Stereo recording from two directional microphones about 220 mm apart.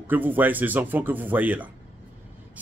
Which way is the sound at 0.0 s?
10° right (ahead or behind).